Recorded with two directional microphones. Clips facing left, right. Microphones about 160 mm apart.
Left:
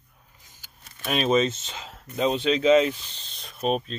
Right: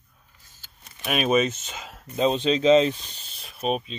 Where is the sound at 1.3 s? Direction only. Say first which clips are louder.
Even; 15° right (ahead or behind).